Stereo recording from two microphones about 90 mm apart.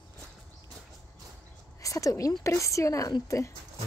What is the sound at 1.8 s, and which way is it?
Speech, 40° left (ahead or behind).